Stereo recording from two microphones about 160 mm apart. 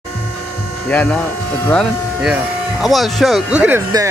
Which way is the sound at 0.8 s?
10° left (ahead or behind).